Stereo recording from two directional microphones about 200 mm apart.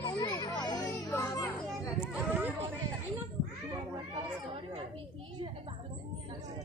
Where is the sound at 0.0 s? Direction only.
20° left (ahead or behind).